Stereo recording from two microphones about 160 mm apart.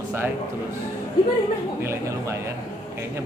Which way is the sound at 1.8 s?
15° right (ahead or behind).